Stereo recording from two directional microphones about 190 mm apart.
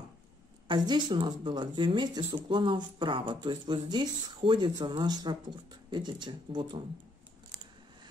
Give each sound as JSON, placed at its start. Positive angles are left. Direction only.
{"t": 0.7, "sound": "speech", "side_deg": -25}